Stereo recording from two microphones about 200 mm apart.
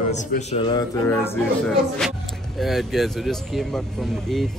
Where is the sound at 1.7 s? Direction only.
Centre (ahead or behind).